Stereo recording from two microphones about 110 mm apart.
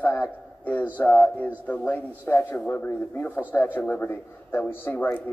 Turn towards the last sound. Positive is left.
turn(degrees=15)  # may be behind; listen again after turning